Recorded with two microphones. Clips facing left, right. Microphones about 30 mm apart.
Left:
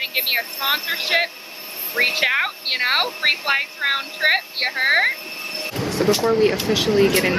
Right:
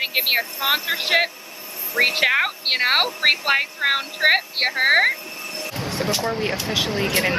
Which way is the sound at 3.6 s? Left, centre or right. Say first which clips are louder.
Right 1 dB; centre.